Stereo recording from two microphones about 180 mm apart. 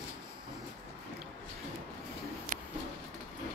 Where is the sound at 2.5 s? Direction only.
50° right (ahead or behind).